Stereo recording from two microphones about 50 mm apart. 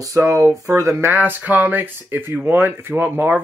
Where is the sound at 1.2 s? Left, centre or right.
Right.